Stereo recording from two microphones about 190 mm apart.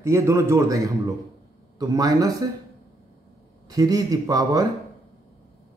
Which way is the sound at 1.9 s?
20° right (ahead or behind).